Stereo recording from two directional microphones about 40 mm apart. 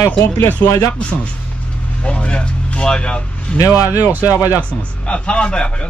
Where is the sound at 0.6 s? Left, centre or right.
Left.